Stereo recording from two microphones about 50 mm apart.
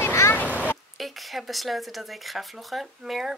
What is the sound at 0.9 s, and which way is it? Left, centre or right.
Speech, centre.